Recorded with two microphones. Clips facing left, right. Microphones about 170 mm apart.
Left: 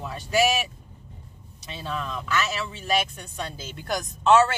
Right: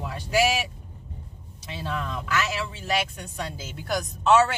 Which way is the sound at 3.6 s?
5° right (ahead or behind).